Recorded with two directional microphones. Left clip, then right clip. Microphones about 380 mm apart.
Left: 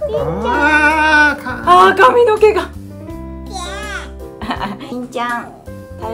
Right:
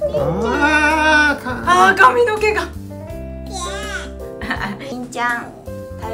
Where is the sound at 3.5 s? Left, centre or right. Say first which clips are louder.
Left 1 dB; centre.